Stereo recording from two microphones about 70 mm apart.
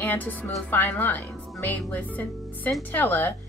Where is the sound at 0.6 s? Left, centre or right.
Left.